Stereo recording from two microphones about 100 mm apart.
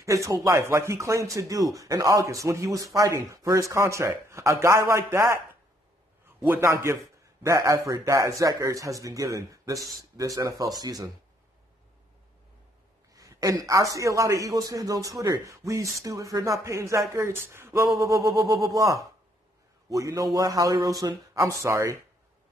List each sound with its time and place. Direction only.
0.0 s a man's voice: 30° right (ahead or behind)
6.5 s a man's voice: 30° right (ahead or behind)
13.1 s a man's voice: 35° right (ahead or behind)